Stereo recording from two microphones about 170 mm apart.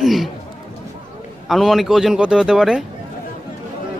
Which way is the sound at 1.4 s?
Centre (ahead or behind).